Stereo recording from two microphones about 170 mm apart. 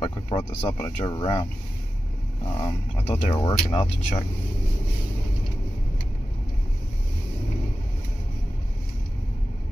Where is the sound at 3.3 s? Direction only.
30° left (ahead or behind).